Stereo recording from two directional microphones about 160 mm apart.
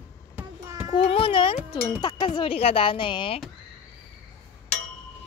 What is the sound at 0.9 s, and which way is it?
Speech, 35° left (ahead or behind).